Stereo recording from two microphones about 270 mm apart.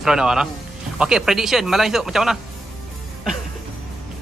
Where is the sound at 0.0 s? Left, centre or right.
Centre.